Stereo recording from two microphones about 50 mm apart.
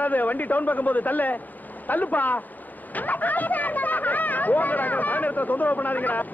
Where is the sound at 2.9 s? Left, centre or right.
Left.